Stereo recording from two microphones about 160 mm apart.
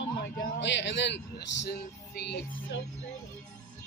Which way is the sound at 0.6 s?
90° left.